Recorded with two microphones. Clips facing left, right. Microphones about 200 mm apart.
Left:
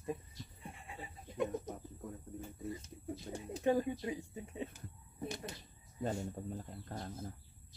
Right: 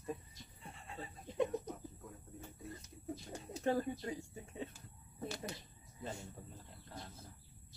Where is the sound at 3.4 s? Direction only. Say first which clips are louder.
Left 3 dB; 15° left (ahead or behind).